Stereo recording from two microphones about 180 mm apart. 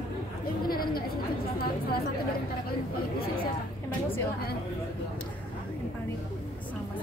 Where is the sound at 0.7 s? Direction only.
55° left (ahead or behind).